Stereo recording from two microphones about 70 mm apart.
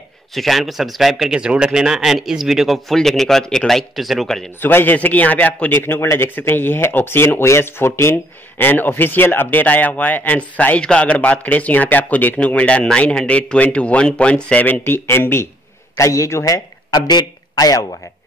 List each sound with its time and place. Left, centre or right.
0.3 s speech: centre
4.6 s speech: left
5.8 s speech: left
16.0 s a man's voice: left
16.4 s speech: left